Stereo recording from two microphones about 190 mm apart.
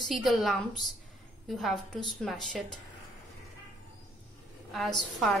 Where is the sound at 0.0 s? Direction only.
Centre (ahead or behind).